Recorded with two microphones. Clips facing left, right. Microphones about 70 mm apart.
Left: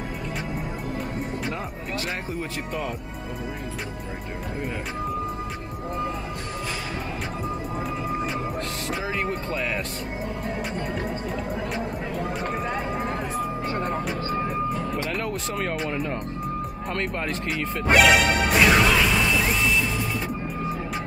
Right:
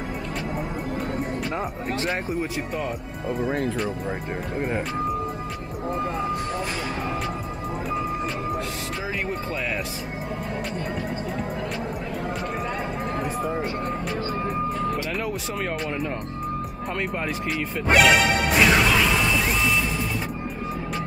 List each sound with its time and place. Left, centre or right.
17.5 s speech: centre